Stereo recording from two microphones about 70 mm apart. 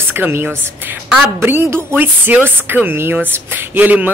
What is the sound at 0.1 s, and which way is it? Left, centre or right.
Speech, right.